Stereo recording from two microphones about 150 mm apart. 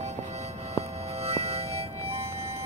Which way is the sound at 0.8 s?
45° right (ahead or behind).